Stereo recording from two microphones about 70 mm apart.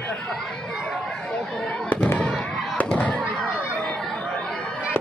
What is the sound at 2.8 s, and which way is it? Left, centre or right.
Fireworks, left.